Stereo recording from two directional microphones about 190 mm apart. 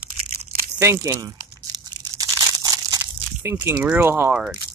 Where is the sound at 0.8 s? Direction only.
15° right (ahead or behind).